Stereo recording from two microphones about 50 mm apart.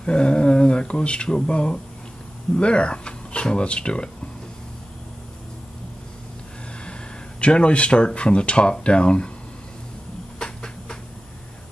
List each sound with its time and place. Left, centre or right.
0.0 s speech: centre
6.8 s speech: left
10.4 s a sound: centre